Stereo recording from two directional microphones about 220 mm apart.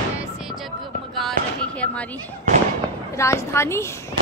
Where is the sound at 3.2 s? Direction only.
10° left (ahead or behind).